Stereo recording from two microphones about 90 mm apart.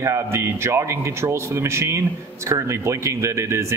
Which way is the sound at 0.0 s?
30° right (ahead or behind).